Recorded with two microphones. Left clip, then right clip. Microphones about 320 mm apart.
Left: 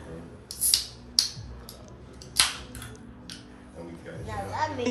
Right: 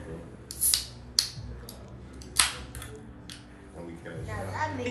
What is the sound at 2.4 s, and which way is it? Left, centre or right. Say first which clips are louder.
Scissors: left 2 dB; centre.